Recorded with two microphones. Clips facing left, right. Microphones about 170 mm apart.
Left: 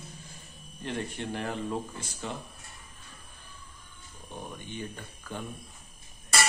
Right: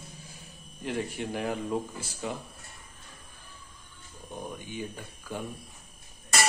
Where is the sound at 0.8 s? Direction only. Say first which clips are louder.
Right 2 dB; 10° right (ahead or behind).